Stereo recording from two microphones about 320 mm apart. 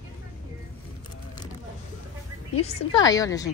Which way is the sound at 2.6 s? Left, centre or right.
Centre.